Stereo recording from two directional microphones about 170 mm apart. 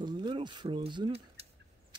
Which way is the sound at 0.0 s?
25° right (ahead or behind).